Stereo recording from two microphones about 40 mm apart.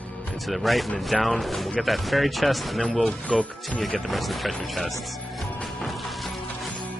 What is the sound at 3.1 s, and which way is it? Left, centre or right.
Speech, left.